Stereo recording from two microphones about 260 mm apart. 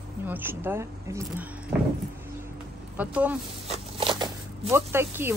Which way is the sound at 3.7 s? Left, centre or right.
Centre.